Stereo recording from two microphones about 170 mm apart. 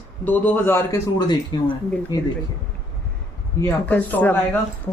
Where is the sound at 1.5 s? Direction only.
25° left (ahead or behind).